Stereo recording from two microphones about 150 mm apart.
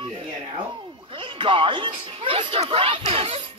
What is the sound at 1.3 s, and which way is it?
Speech, 35° right (ahead or behind).